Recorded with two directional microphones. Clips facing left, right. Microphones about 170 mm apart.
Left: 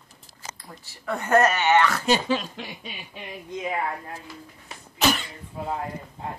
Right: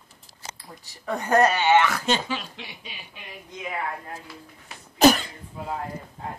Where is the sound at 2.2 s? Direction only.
40° left (ahead or behind).